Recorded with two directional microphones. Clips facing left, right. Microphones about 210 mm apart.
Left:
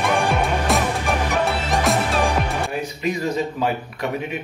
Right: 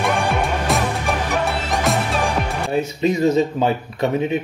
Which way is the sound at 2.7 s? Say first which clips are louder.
Right 5 dB; 25° right (ahead or behind).